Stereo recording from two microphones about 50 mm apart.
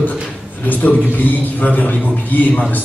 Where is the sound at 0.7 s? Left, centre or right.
Left.